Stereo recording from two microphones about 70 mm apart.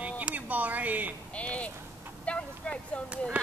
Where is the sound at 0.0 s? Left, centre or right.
Centre.